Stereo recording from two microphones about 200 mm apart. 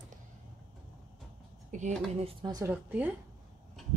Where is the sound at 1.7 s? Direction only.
35° right (ahead or behind).